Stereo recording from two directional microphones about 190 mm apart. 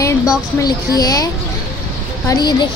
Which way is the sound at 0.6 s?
20° left (ahead or behind).